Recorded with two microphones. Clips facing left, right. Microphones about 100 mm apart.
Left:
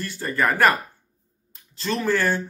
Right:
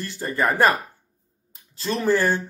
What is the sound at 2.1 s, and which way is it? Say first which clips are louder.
Speech: right 3 dB; 15° right (ahead or behind).